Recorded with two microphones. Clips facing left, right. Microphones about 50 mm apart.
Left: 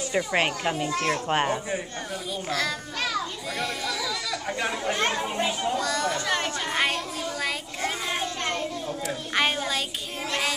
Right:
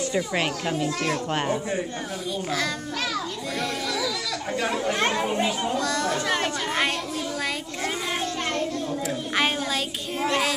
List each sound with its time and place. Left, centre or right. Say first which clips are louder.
0.1 s a child's voice: left 1 dB; centre
2.5 s a child's voice: left 1 dB; centre
4.9 s a child's voice: right 3 dB; centre
7.4 s children playing: right 1 dB; centre